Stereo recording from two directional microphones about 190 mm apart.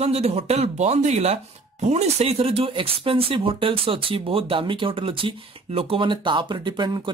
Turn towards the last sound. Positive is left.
turn(degrees=-25)  # may be behind; listen again after turning